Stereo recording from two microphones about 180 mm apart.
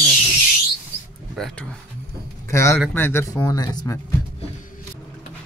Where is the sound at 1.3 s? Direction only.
5° left (ahead or behind).